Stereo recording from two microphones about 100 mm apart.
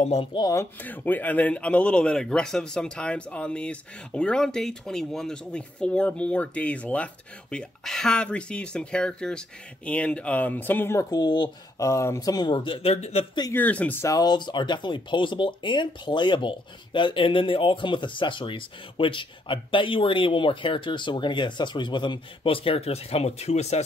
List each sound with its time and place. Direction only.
0.0 s speech: 90° left
0.7 s speech: 15° left (ahead or behind)
11.1 s speech: 45° left (ahead or behind)
11.8 s speech: 30° left (ahead or behind); by 13.3 s 90° left
13.5 s speech: 15° left (ahead or behind)
14.0 s speech: 40° left (ahead or behind); by 23.8 s 90° left